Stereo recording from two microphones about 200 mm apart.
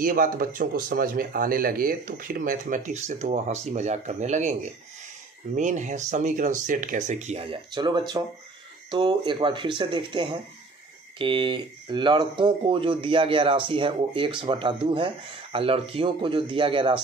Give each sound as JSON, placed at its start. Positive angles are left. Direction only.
{"t": 0.0, "sound": "speech", "side_deg": -45}
{"t": 5.6, "sound": "speech", "side_deg": -40}